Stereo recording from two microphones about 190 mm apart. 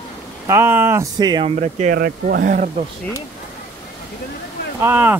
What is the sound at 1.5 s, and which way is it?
Speech, 40° right (ahead or behind).